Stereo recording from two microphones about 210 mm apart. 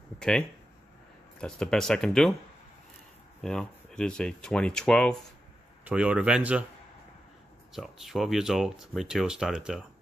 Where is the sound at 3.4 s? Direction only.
5° left (ahead or behind).